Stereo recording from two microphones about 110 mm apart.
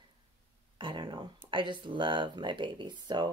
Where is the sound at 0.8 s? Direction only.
45° right (ahead or behind).